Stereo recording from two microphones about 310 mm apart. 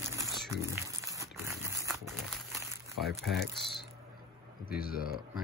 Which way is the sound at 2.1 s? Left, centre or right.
Centre.